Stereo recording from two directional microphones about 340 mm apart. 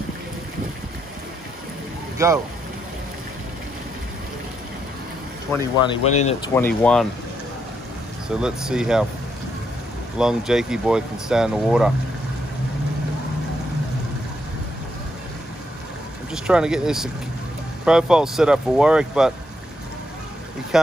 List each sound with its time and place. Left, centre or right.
2.1 s speech: centre
5.5 s speech: centre
6.5 s speech: centre
8.4 s speech: centre
10.1 s speech: centre
16.3 s speech: centre
20.7 s speech: centre